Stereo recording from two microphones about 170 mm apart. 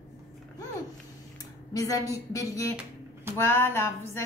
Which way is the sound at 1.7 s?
20° left (ahead or behind).